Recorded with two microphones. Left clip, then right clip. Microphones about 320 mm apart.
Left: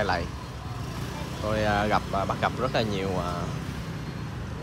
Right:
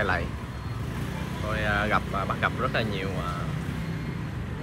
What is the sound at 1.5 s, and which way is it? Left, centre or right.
Speech, centre.